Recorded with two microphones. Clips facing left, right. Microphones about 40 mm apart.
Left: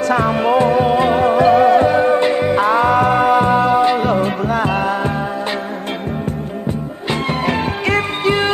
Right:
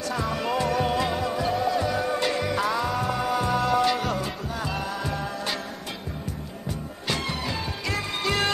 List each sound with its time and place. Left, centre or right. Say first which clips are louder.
0.1 s music: left 12 dB; left
4.5 s music: left 13 dB; left
7.4 s music: left 12 dB; left